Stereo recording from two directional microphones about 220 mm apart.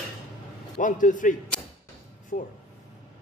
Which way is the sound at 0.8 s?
35° left (ahead or behind).